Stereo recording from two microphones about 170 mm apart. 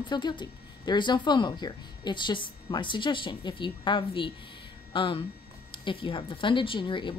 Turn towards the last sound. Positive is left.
turn(degrees=30)  # may be behind; listen again after turning